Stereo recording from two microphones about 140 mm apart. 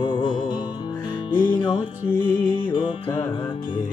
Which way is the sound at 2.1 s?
15° left (ahead or behind).